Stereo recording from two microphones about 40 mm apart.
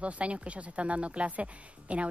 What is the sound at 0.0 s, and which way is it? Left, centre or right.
Speech, right.